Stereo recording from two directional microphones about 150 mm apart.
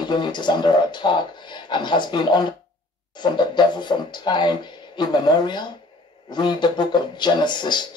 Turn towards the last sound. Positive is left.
turn(degrees=30)  # may be behind; listen again after turning